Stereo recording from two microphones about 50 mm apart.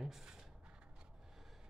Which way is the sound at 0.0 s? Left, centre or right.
Centre.